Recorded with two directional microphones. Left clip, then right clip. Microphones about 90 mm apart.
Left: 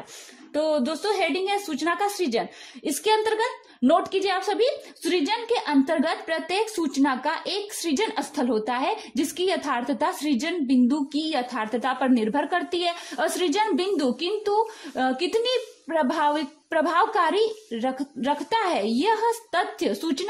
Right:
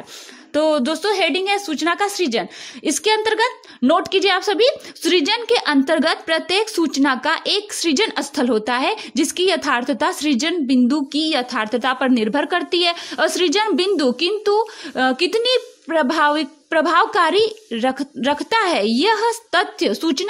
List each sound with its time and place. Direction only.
0.5 s a woman's voice: 50° right (ahead or behind); by 3.3 s 25° right (ahead or behind)
4.0 s a woman's voice: 40° right (ahead or behind)